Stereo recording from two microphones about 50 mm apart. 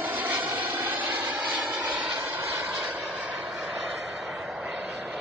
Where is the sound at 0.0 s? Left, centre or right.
Right.